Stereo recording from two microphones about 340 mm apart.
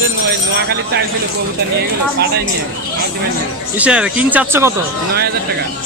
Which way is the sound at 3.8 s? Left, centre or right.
Centre.